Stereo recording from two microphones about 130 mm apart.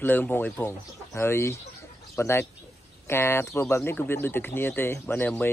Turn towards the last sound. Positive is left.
turn(degrees=15)  # may be behind; listen again after turning